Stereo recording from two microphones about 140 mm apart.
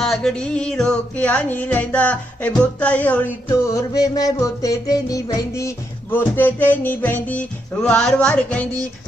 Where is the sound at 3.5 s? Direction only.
20° left (ahead or behind).